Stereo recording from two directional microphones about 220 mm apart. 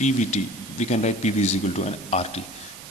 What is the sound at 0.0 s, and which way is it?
A man's voice, 30° left (ahead or behind).